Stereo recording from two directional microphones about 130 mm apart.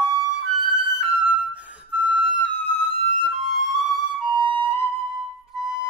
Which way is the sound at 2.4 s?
45° left (ahead or behind).